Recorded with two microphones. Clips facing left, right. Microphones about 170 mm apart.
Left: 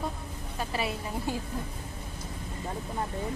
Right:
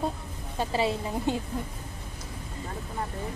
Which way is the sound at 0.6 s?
25° right (ahead or behind).